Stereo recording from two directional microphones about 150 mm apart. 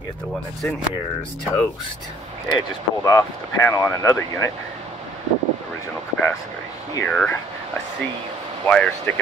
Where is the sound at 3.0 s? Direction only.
20° left (ahead or behind).